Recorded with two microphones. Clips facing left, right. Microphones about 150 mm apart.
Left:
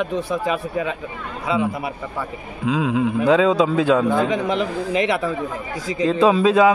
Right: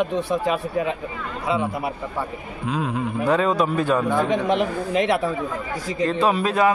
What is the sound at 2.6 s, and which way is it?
Speech, 90° left.